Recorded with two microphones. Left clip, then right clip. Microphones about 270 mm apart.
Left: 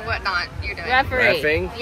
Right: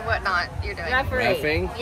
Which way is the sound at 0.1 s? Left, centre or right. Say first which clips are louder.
Even; centre.